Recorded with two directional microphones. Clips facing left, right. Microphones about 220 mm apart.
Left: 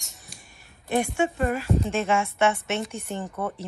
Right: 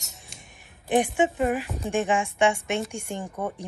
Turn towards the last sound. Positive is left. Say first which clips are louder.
# left 1 dB
turn(degrees=-15)  # may be behind; listen again after turning